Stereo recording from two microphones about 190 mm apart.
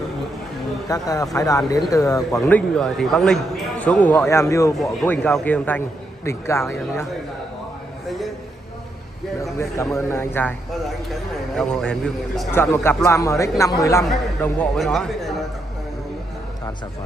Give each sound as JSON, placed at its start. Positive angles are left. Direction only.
{"t": 0.8, "sound": "a man's voice", "side_deg": 20}
{"t": 9.4, "sound": "a man's voice", "side_deg": 15}
{"t": 14.4, "sound": "a man's voice", "side_deg": 5}